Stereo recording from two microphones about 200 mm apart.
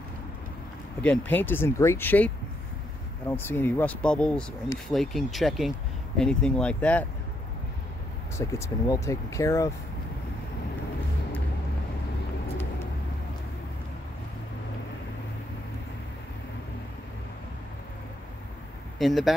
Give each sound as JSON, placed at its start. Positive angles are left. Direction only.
{"t": 1.0, "sound": "speech", "side_deg": 5}
{"t": 8.4, "sound": "speech", "side_deg": 15}
{"t": 18.9, "sound": "speech", "side_deg": 0}